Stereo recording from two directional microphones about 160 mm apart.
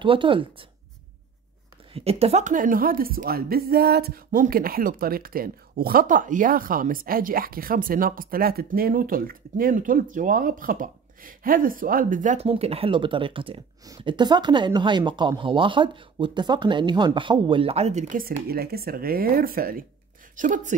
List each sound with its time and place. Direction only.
0.0 s speech: 30° right (ahead or behind)
2.0 s a woman's voice: 40° right (ahead or behind)
18.2 s speech: 75° right (ahead or behind)
20.3 s a woman's voice: 55° right (ahead or behind)